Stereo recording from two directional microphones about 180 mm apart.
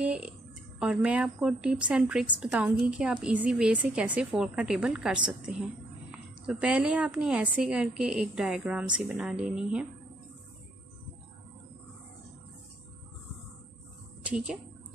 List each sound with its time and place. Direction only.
0.0 s a sound: 5° right (ahead or behind)
0.7 s a woman's voice: 5° right (ahead or behind)
14.2 s a woman's voice: 5° right (ahead or behind)